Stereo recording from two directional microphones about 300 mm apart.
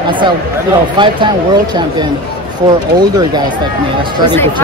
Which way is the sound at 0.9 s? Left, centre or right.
Centre.